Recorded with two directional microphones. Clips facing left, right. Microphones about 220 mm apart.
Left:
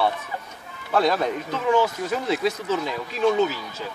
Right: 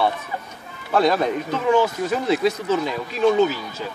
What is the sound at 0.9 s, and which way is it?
Speech, 15° right (ahead or behind).